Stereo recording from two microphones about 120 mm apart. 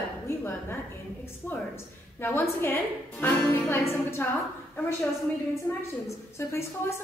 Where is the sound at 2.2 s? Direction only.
20° left (ahead or behind).